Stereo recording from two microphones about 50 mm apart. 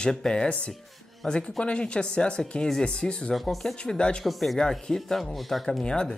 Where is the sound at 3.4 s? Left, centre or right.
Centre.